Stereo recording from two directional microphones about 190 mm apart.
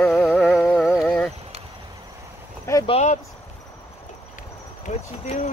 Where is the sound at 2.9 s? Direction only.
35° left (ahead or behind).